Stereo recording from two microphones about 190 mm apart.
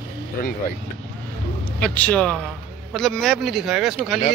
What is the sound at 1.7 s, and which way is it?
Speech, 5° left (ahead or behind).